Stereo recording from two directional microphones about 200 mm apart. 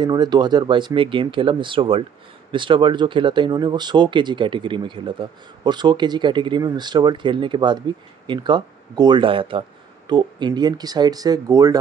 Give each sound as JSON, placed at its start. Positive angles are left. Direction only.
{"t": 0.0, "sound": "speech", "side_deg": -20}